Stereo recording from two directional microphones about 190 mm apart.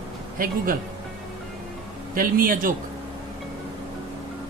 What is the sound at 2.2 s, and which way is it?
Speech, 50° right (ahead or behind).